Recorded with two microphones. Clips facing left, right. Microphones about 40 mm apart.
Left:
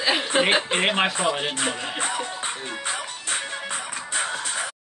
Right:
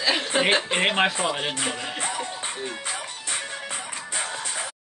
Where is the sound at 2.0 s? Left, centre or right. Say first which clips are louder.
Left 2 dB; left.